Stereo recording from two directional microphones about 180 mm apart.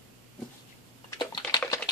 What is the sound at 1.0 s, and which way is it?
Typing, 20° left (ahead or behind).